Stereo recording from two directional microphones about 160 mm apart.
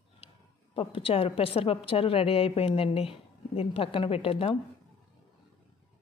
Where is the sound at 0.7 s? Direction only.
35° left (ahead or behind).